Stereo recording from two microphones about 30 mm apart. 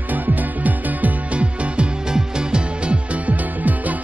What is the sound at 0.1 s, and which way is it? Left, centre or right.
Music, right.